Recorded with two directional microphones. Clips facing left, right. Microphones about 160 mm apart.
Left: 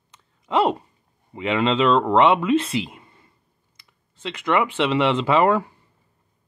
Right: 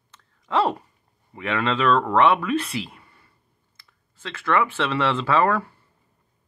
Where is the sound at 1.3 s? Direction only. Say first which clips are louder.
Left 4 dB; 20° left (ahead or behind).